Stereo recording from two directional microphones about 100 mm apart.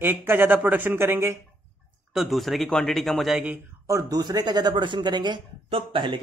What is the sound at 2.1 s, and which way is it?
Speech, centre (ahead or behind).